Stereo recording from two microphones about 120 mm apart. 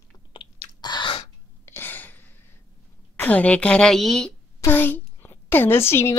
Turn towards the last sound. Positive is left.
turn(degrees=20)  # may be behind; listen again after turning